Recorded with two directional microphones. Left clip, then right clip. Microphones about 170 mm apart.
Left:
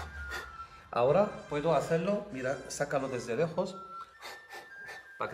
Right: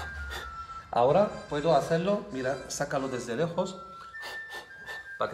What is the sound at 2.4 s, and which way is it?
Speech, 35° left (ahead or behind).